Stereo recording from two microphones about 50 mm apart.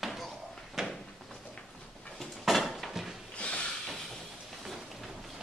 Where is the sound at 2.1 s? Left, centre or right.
Centre.